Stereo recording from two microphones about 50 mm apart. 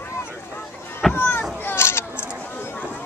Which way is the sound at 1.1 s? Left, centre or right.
Left.